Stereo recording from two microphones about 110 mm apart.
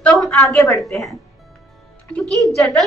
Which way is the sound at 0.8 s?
Centre (ahead or behind).